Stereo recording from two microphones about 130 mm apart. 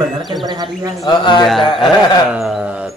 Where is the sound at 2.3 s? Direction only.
5° right (ahead or behind).